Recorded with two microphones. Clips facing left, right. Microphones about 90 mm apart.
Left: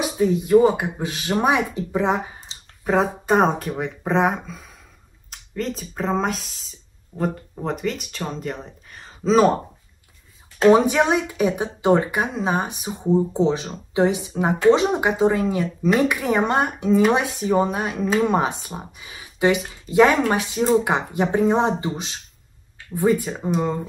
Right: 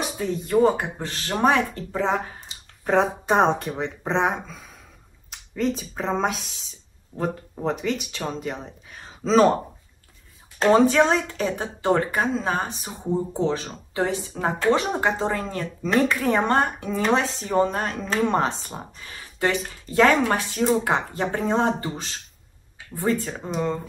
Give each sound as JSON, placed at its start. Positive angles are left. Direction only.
{"t": 0.0, "sound": "a woman's voice", "side_deg": 10}
{"t": 10.7, "sound": "a woman's voice", "side_deg": 15}